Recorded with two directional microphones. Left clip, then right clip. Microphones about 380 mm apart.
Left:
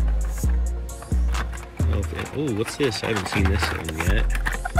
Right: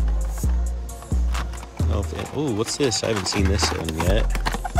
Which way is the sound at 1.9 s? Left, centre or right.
Centre.